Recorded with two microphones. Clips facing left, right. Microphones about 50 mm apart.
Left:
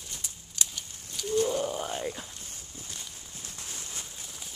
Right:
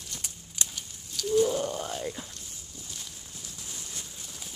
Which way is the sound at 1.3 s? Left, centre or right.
Centre.